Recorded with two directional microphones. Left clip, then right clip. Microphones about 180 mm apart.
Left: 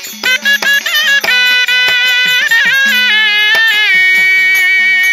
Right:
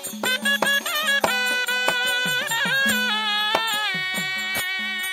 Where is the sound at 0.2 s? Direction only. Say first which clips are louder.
Left 11 dB; 45° right (ahead or behind).